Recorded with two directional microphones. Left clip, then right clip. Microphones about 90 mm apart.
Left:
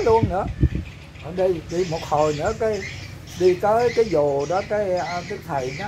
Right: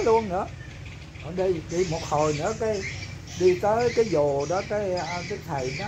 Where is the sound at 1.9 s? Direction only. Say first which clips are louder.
Left 6 dB; 5° left (ahead or behind).